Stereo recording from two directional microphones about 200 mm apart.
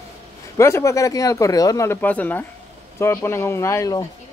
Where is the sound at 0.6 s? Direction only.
15° left (ahead or behind).